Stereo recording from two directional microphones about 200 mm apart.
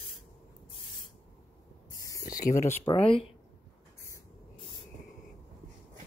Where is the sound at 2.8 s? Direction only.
30° left (ahead or behind).